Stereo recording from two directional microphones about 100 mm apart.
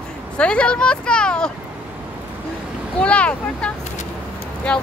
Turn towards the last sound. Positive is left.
turn(degrees=10)  # may be behind; listen again after turning